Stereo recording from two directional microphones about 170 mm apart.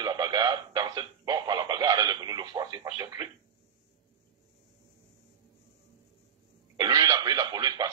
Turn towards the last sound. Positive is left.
turn(degrees=-25)  # may be behind; listen again after turning